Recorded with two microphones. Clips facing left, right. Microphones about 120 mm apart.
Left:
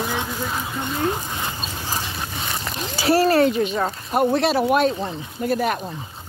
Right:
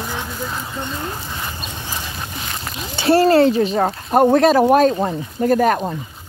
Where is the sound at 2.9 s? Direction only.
25° right (ahead or behind).